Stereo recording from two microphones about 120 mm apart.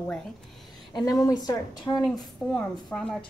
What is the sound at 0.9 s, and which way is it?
A woman's voice, 30° left (ahead or behind).